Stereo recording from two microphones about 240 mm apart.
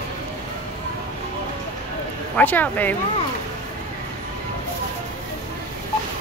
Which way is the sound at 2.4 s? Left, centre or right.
Centre.